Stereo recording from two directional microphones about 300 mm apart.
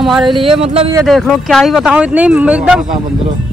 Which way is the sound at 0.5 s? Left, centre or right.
Centre.